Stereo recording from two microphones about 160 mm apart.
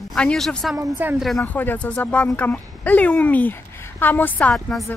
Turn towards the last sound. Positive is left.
turn(degrees=5)  # may be behind; listen again after turning